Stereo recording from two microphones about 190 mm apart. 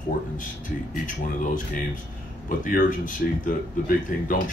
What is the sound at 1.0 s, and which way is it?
Speech, 45° left (ahead or behind).